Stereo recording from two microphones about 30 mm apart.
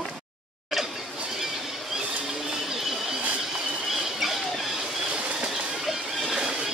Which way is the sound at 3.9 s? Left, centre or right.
Centre.